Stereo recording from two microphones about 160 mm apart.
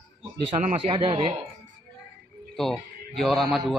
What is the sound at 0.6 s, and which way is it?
Speech, 35° right (ahead or behind).